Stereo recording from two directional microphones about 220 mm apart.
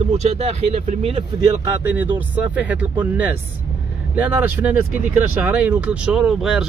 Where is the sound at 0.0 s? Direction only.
30° right (ahead or behind).